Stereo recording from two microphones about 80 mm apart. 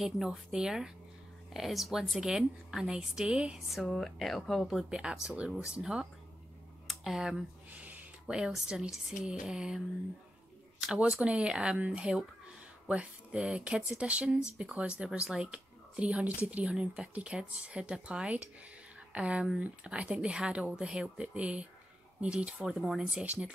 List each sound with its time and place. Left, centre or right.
0.0 s a woman's voice: centre
7.7 s a sound: centre
8.4 s speech: centre
10.8 s speech: centre
22.7 s speech: centre
23.2 s speech: centre